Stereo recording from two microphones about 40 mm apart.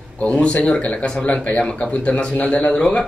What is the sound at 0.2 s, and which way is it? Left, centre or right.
A man's voice, left.